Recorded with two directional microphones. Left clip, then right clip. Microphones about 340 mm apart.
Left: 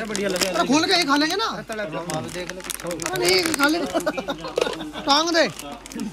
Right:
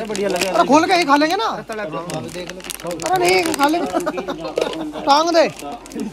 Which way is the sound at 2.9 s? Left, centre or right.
Centre.